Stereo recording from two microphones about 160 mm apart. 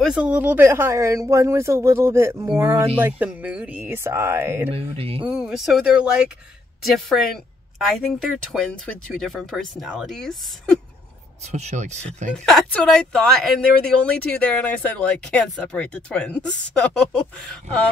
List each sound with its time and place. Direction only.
0.0 s speech: 5° right (ahead or behind)
4.6 s speech: 35° right (ahead or behind)
5.2 s speech: 5° right (ahead or behind)
7.9 s speech: centre (ahead or behind)
11.5 s speech: 45° right (ahead or behind)
12.4 s speech: centre (ahead or behind)